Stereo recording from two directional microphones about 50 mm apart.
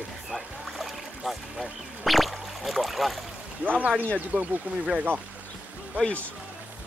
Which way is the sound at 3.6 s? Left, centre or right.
Right.